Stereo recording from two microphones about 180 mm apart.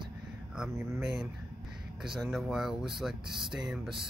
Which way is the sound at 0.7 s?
15° right (ahead or behind).